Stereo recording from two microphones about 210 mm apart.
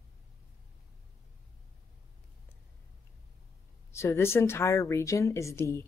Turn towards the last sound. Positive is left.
turn(degrees=10)  # may be behind; listen again after turning